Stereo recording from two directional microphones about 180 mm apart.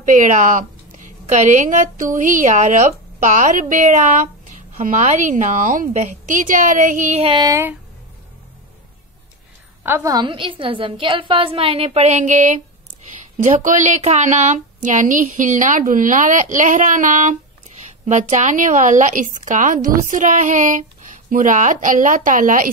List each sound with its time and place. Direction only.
0.0 s a woman's voice: 45° right (ahead or behind)
7.4 s speech: 15° right (ahead or behind)
9.8 s a woman's voice: 15° right (ahead or behind); by 22.7 s 50° right (ahead or behind)